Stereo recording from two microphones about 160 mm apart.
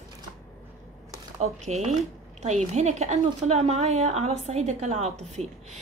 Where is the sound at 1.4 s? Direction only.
45° right (ahead or behind).